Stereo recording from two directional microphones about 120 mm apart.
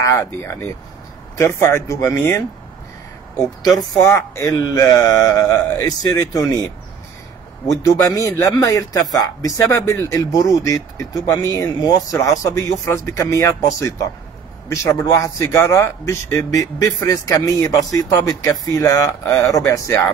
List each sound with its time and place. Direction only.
0.0 s speech: 25° left (ahead or behind)
3.6 s speech: centre (ahead or behind)
4.0 s speech: 25° left (ahead or behind)
7.7 s speech: 25° left (ahead or behind)